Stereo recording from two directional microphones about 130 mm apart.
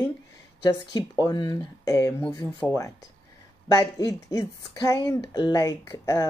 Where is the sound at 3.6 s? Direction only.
30° left (ahead or behind).